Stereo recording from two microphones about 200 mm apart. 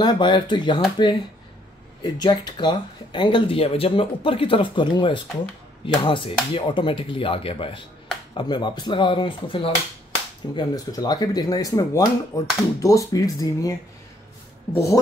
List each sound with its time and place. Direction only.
0.0 s speech: 20° left (ahead or behind)